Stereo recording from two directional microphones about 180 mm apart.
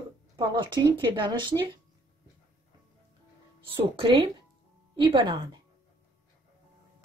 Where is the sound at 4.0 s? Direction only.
30° right (ahead or behind).